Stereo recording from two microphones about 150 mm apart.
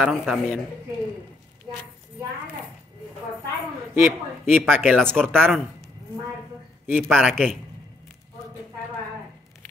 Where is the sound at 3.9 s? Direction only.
15° right (ahead or behind).